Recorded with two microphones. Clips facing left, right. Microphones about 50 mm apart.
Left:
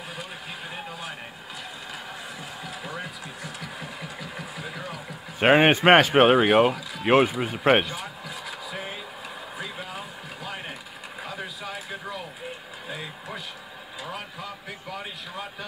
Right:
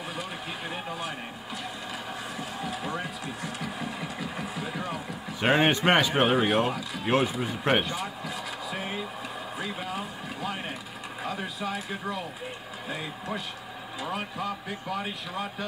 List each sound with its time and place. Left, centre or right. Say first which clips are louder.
5.4 s speech: left 5 dB; left
6.0 s speech: left 7 dB; left
6.4 s speech: left 6 dB; left